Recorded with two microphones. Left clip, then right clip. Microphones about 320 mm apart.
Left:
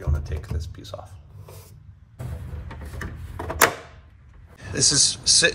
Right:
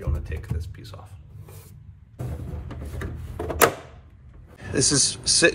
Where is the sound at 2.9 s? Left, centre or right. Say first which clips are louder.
Right 1 dB; centre.